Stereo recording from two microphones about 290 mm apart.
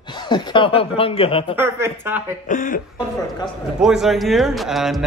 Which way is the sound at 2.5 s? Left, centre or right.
Left.